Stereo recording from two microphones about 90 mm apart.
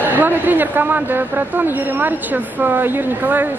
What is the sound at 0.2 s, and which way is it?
Speech, 20° right (ahead or behind).